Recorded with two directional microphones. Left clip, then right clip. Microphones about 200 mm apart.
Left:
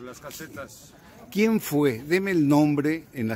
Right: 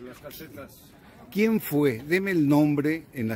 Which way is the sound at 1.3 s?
5° left (ahead or behind).